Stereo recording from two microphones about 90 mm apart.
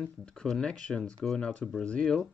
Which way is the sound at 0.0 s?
10° left (ahead or behind).